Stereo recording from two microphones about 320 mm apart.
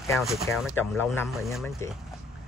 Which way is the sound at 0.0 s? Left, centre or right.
Centre.